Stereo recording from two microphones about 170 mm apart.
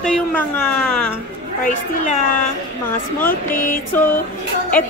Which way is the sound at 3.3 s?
50° left (ahead or behind).